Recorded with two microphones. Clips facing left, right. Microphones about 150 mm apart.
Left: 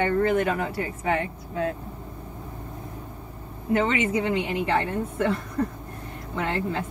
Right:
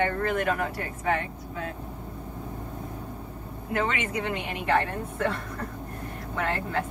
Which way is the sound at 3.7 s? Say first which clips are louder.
Left 5 dB; 25° left (ahead or behind).